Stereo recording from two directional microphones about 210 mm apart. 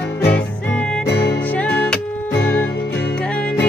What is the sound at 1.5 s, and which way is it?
Music, 5° left (ahead or behind).